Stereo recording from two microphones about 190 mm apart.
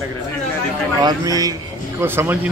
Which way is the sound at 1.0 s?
20° right (ahead or behind).